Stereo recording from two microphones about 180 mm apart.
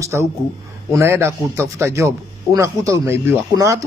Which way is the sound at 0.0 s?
15° right (ahead or behind).